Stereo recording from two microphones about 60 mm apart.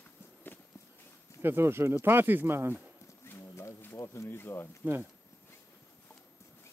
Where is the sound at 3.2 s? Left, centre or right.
Left.